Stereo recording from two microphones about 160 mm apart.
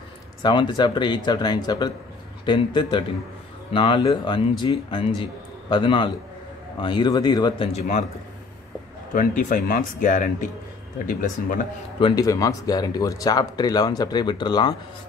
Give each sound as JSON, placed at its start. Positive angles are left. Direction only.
{"t": 0.4, "sound": "a man's voice", "side_deg": 25}
{"t": 9.1, "sound": "speech", "side_deg": 55}
{"t": 12.0, "sound": "speech", "side_deg": 20}